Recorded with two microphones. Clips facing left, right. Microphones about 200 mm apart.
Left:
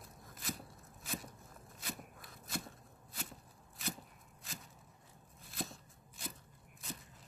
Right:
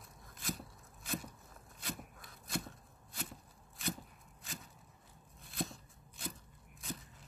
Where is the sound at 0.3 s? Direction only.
Centre (ahead or behind).